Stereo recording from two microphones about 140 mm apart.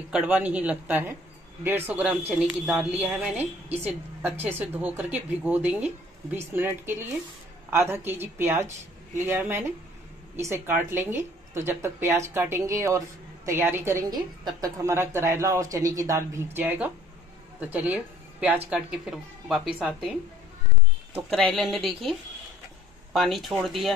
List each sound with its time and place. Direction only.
0.1 s a woman's voice: 10° right (ahead or behind)
14.1 s a woman's voice: 30° right (ahead or behind); by 20.1 s 5° right (ahead or behind)
21.3 s speech: 5° left (ahead or behind)
23.1 s speech: centre (ahead or behind)